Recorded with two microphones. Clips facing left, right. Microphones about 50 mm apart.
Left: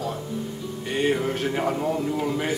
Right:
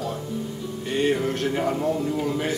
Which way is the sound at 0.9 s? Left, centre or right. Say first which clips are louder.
Right 1 dB; centre.